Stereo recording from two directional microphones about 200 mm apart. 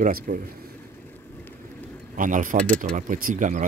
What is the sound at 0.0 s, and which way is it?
Speech, 45° right (ahead or behind).